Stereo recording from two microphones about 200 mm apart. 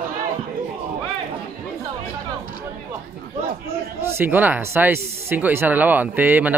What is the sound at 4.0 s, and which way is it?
Speech, 10° right (ahead or behind).